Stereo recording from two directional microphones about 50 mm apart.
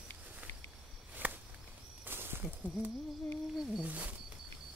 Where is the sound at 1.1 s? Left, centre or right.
Right.